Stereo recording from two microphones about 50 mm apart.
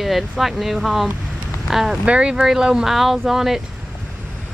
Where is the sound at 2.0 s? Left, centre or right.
Right; by 3.6 s centre.